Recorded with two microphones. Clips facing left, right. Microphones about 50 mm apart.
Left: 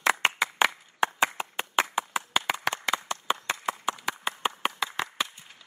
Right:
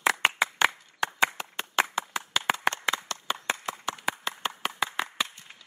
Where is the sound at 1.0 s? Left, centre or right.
Centre.